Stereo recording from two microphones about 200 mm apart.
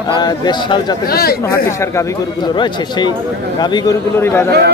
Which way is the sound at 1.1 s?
50° left (ahead or behind).